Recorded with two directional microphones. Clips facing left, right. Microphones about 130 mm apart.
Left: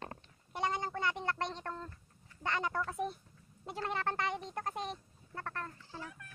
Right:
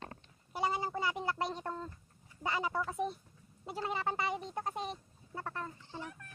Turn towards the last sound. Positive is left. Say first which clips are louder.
# right 2 dB
turn(degrees=-20)  # may be behind; listen again after turning